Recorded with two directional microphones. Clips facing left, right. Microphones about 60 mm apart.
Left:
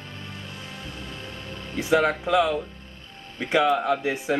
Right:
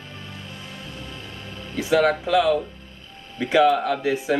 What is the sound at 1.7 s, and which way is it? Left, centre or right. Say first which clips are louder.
Speech: right 2 dB; centre.